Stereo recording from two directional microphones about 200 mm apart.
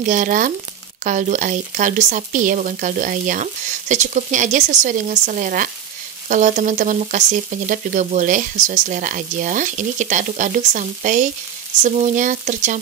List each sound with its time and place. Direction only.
0.0 s speech: 40° right (ahead or behind)